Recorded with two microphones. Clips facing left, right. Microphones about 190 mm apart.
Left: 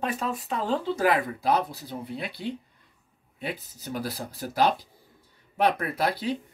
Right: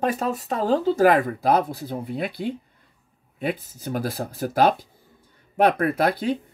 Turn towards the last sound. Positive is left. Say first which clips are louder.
# right 6 dB
turn(degrees=-50)  # may be behind; listen again after turning